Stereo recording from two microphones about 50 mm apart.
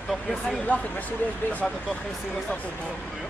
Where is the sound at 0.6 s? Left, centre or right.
Left.